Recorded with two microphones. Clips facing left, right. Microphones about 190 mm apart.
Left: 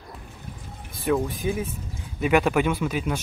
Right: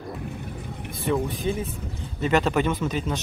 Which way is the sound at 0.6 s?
65° right (ahead or behind).